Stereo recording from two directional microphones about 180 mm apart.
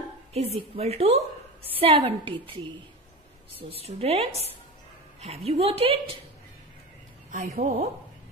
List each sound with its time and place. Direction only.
0.3 s a woman's voice: 35° right (ahead or behind)
3.5 s a woman's voice: 35° right (ahead or behind)
7.2 s a woman's voice: 45° right (ahead or behind)